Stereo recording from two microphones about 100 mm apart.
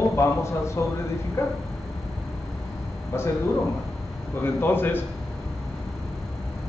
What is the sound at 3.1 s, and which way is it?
Speech, 25° left (ahead or behind).